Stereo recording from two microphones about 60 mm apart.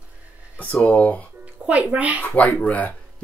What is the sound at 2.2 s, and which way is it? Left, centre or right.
Speech, left.